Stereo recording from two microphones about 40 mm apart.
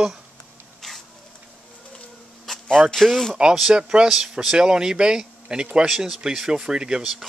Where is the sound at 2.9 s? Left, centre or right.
Centre.